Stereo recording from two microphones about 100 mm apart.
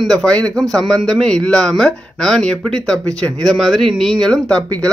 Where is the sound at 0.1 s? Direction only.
10° left (ahead or behind).